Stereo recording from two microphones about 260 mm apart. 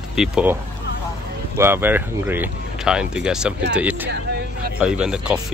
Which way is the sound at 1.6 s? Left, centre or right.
Centre.